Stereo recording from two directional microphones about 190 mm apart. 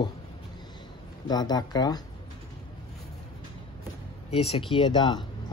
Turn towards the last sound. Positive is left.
turn(degrees=25)  # may be behind; listen again after turning